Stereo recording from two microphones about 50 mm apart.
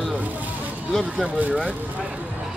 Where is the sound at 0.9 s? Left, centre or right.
Centre.